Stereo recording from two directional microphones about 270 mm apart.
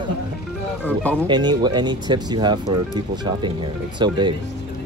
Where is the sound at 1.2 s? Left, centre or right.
Centre.